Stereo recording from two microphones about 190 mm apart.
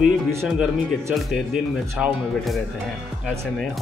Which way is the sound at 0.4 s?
Centre (ahead or behind).